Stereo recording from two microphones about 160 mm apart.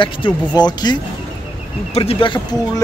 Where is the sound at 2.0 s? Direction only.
35° left (ahead or behind).